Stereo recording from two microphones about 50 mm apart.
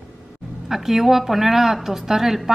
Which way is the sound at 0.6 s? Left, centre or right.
Centre.